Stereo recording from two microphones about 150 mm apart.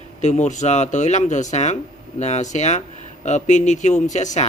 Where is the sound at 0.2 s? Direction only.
55° left (ahead or behind).